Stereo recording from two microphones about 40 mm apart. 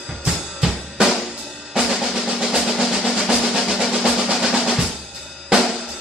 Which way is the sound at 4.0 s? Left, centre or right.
Centre.